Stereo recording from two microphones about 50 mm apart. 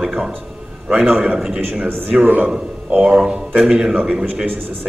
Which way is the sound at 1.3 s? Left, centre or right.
Centre.